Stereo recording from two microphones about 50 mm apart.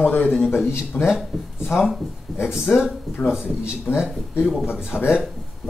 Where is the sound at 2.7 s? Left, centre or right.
Left.